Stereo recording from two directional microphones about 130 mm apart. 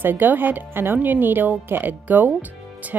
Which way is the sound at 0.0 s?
15° right (ahead or behind).